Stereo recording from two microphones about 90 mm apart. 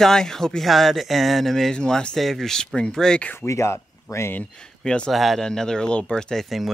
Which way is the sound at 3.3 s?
35° left (ahead or behind).